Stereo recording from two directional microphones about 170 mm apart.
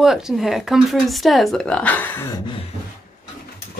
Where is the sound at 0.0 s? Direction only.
Centre (ahead or behind).